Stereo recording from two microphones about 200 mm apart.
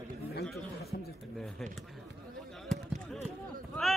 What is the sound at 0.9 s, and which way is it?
Speech, 50° left (ahead or behind).